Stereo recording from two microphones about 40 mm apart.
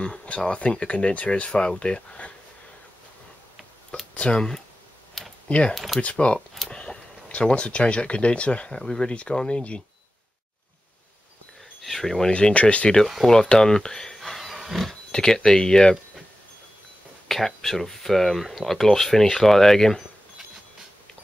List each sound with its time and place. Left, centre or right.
0.0 s speech: left
4.1 s speech: left
5.2 s computer keyboard: centre
5.5 s speech: left
8.7 s speech: centre
11.8 s speech: centre
12.3 s speech: left
13.0 s speech: centre
13.3 s speech: centre
14.1 s a sound: centre
15.0 s speech: centre
17.3 s speech: centre
19.0 s speech: centre
19.4 s speech: centre